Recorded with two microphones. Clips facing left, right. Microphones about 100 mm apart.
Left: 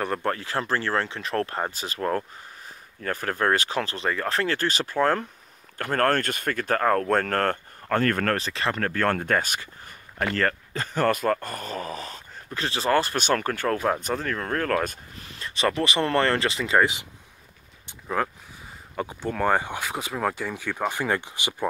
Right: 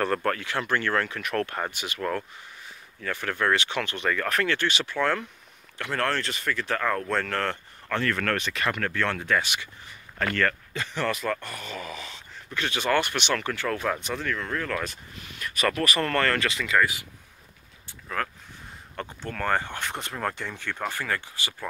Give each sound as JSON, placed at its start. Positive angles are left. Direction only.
{"t": 0.0, "sound": "speech", "side_deg": 15}
{"t": 0.3, "sound": "speech", "side_deg": 35}
{"t": 17.8, "sound": "a sound", "side_deg": 20}
{"t": 18.9, "sound": "speech", "side_deg": 10}
{"t": 21.0, "sound": "speech", "side_deg": 20}